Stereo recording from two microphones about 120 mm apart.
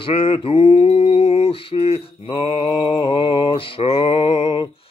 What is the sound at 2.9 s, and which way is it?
Mantra, 40° left (ahead or behind).